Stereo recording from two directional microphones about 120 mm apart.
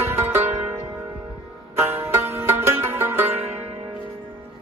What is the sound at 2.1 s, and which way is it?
Music, 15° right (ahead or behind).